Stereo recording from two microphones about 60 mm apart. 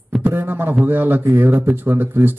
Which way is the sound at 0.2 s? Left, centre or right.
Right.